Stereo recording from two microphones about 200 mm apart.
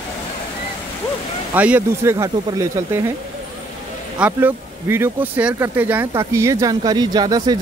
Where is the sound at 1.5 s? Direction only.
10° right (ahead or behind).